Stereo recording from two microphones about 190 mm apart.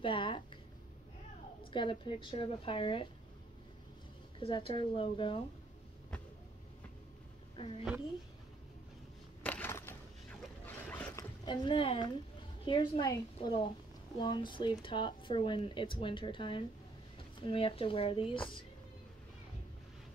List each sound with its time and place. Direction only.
0.0 s a sound: 25° left (ahead or behind)
1.7 s speech: 25° left (ahead or behind)
4.4 s speech: 30° left (ahead or behind)
9.4 s a sound: 10° left (ahead or behind)
10.4 s boat: 10° left (ahead or behind)
11.4 s speech: 25° left (ahead or behind)